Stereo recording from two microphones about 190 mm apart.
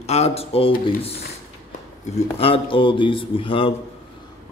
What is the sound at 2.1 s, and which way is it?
Speech, 30° left (ahead or behind).